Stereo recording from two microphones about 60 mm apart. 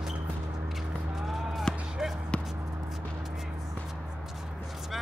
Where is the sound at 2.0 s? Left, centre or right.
Centre.